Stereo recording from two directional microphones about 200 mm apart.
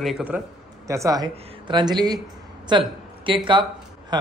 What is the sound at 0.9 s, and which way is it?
A woman's voice, 15° right (ahead or behind).